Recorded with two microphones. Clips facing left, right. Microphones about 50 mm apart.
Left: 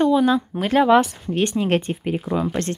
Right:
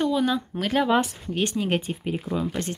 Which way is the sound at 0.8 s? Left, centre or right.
Left.